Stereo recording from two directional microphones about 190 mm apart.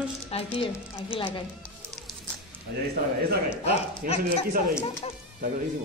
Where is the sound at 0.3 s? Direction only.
30° left (ahead or behind).